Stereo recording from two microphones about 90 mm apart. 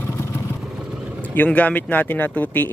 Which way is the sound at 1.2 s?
20° left (ahead or behind).